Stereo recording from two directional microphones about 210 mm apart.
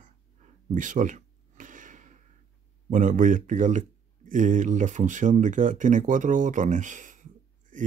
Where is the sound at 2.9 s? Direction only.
35° right (ahead or behind).